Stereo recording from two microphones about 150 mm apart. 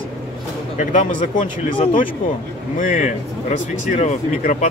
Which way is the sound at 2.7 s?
60° left (ahead or behind).